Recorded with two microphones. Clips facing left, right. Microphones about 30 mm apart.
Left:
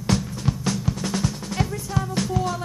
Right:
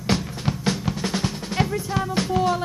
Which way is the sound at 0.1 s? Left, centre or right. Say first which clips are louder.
Even; right.